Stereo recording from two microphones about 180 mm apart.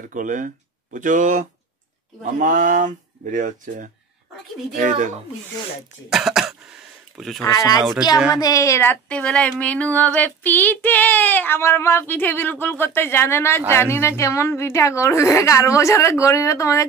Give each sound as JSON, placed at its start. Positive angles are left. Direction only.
{"t": 0.1, "sound": "speech", "side_deg": -45}
{"t": 6.0, "sound": "speech", "side_deg": 0}
{"t": 7.4, "sound": "speech", "side_deg": 20}